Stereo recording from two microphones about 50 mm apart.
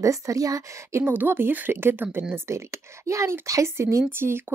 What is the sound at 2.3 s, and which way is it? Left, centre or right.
Speech, right.